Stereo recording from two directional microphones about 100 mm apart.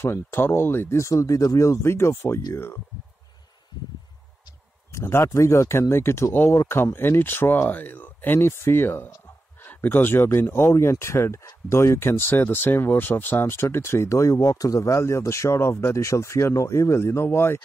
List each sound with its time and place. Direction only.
0.0 s speech: 25° left (ahead or behind)
4.9 s speech: 30° left (ahead or behind)